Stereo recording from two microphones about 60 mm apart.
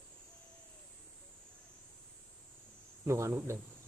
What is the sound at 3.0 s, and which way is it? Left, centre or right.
Speech, right.